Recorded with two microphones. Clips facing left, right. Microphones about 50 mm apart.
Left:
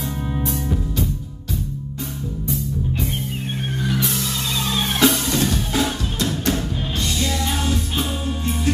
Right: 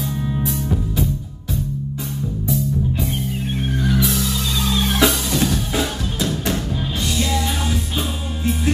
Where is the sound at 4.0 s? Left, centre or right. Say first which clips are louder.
Right 3 dB; centre.